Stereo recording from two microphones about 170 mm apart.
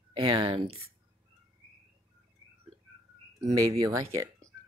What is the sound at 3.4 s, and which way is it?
Speech, 20° right (ahead or behind).